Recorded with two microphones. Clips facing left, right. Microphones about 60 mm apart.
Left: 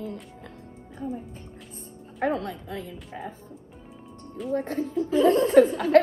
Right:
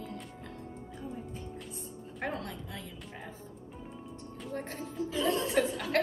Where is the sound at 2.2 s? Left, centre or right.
Left.